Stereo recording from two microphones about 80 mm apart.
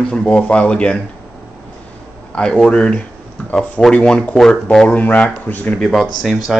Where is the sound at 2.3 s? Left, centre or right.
Centre.